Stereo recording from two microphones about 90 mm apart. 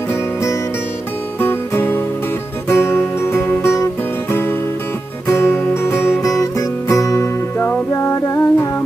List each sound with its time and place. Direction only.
1.4 s music: 25° left (ahead or behind)